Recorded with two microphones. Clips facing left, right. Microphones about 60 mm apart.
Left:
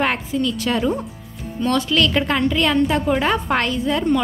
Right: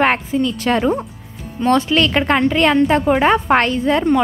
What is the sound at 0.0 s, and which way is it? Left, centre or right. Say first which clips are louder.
A woman's voice: right 4 dB; right.